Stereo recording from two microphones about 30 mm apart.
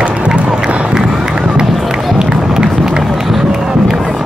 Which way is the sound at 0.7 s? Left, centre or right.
Right.